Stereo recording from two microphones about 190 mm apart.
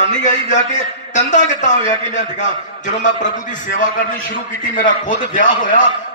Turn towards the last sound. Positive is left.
turn(degrees=45)  # may be behind; listen again after turning